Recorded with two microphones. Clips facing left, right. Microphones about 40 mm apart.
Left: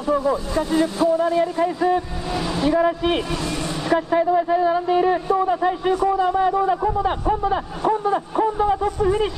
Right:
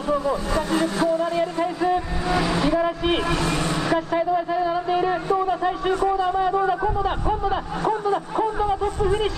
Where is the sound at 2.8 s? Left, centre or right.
Centre.